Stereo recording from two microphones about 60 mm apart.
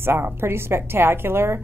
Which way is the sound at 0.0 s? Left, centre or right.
Right.